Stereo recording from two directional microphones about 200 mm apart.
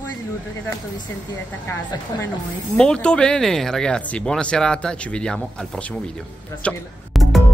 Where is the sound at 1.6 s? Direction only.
10° left (ahead or behind).